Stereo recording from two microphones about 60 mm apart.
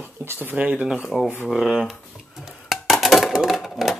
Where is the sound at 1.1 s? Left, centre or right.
Centre.